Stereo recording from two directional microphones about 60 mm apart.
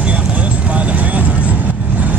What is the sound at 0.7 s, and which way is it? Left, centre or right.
Vehicle, right.